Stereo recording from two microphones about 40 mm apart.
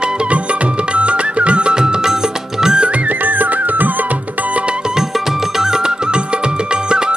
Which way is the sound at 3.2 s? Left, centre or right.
Right.